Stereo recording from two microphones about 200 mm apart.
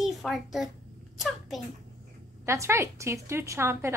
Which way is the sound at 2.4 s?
15° right (ahead or behind).